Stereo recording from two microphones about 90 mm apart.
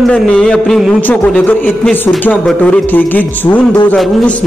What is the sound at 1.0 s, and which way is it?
Speech, 15° left (ahead or behind).